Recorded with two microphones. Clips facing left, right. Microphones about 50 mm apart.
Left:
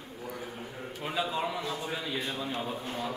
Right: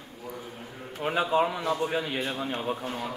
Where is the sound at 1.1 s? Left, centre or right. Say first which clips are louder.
Right 7 dB; right.